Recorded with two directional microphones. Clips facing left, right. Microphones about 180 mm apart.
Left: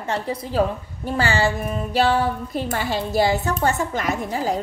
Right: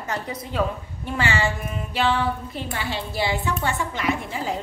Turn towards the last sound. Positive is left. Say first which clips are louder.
# left 3 dB
turn(degrees=40)  # may be behind; listen again after turning